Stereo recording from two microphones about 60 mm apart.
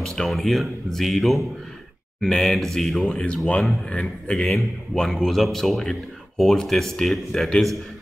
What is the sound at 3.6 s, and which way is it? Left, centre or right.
A man's voice, centre.